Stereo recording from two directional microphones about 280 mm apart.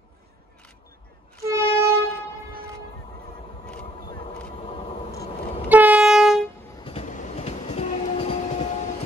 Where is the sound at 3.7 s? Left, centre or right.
Centre.